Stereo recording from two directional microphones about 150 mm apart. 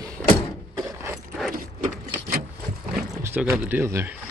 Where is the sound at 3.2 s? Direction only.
15° right (ahead or behind).